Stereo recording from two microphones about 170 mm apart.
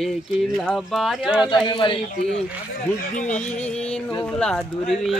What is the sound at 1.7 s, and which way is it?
Speech, 30° left (ahead or behind).